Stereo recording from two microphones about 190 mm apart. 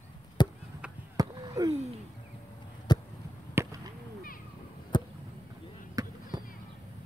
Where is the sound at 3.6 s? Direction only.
10° right (ahead or behind).